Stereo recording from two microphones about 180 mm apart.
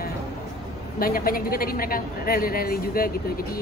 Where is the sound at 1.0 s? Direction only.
55° left (ahead or behind).